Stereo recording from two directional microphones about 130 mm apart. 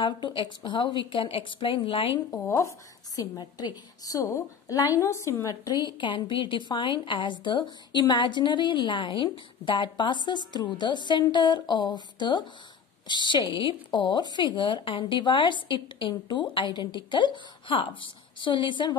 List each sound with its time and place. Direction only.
0.0 s a woman's voice: 40° left (ahead or behind)
2.3 s a woman's voice: 20° left (ahead or behind); by 18.9 s 35° left (ahead or behind)